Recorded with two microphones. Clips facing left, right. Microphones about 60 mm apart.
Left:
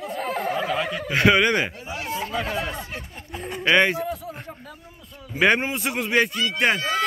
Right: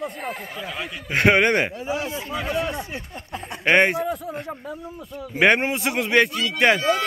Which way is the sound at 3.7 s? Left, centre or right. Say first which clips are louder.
Right 1 dB; right.